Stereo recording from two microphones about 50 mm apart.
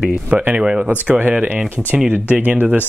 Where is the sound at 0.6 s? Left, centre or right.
Centre.